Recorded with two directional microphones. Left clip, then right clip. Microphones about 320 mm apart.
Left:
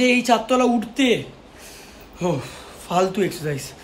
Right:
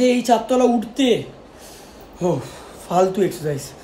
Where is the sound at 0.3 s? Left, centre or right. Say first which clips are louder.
Right 2 dB; centre.